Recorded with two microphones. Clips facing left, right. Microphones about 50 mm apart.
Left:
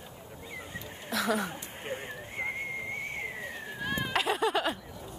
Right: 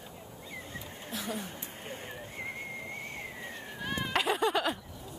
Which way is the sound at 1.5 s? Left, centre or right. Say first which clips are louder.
Left 4 dB; left.